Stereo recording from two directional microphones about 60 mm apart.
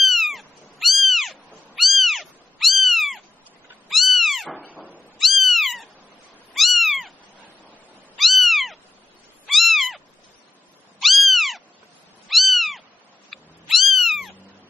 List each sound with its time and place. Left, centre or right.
0.0 s cat: centre
4.6 s cat: right
5.2 s cat: centre
8.2 s cat: centre